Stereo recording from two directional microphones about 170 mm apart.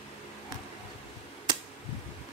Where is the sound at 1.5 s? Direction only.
25° right (ahead or behind).